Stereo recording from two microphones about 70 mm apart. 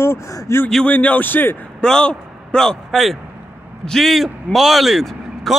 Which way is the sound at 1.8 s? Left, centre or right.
Centre.